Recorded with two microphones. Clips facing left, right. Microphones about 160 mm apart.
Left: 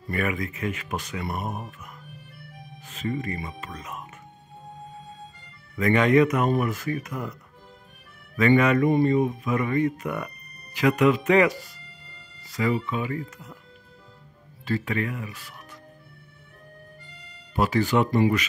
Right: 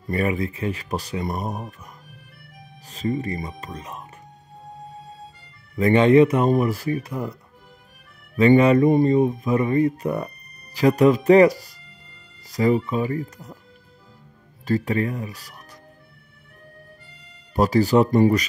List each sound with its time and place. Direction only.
0.1 s speech: 30° right (ahead or behind)
2.8 s speech: 35° right (ahead or behind)
5.8 s speech: 30° right (ahead or behind)
8.4 s speech: 30° right (ahead or behind)
14.6 s speech: 40° right (ahead or behind)
17.6 s speech: 40° right (ahead or behind)